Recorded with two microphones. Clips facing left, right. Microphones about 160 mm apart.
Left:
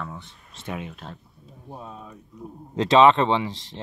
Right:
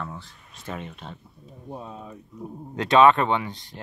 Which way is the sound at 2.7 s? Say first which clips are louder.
Left 1 dB; 25° left (ahead or behind).